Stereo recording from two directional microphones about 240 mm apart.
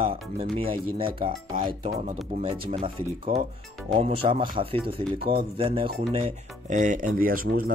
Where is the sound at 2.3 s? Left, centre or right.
Right.